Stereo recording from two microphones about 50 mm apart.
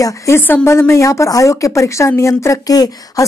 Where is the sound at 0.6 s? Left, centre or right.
Left.